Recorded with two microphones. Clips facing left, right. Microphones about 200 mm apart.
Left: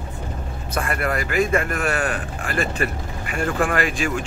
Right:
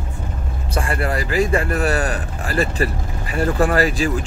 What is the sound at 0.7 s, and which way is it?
A man's voice, 30° right (ahead or behind).